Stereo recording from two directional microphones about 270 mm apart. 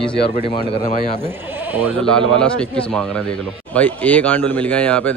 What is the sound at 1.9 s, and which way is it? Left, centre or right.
A man's voice, centre.